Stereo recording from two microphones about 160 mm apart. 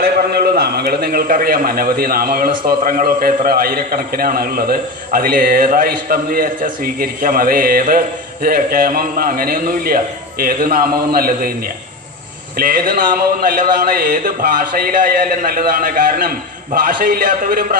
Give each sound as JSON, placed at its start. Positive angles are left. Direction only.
{"t": 0.0, "sound": "a man's voice", "side_deg": -75}
{"t": 12.5, "sound": "a man's voice", "side_deg": -65}